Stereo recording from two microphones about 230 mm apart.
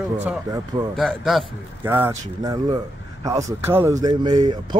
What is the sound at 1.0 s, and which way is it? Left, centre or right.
Speech, centre.